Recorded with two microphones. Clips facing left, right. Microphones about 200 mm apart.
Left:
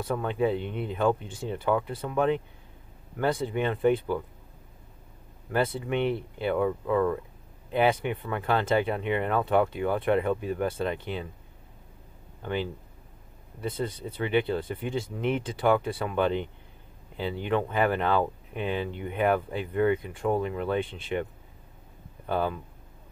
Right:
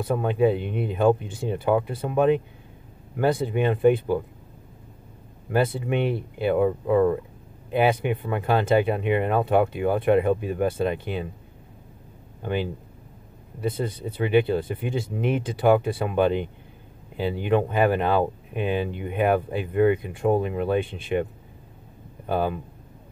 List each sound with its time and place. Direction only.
0.0 s speech: 15° right (ahead or behind)
5.5 s speech: 10° right (ahead or behind)
7.7 s speech: 10° right (ahead or behind)
12.4 s speech: 15° right (ahead or behind)